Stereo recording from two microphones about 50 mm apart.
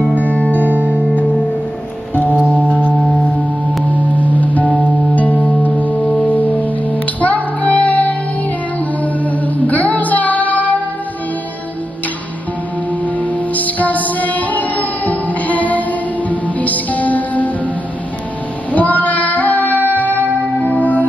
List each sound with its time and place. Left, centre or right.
0.3 s music: left
0.6 s music: right
2.4 s singing bowl: right
4.1 s music: left
4.7 s music: right
5.1 s music: left
13.0 s music: left
18.7 s child singing: left
20.6 s music: left